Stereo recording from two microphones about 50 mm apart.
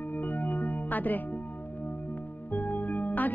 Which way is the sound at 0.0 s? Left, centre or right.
Left.